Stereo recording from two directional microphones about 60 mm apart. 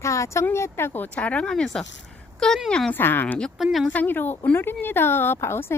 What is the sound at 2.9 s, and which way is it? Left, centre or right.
Speech, left.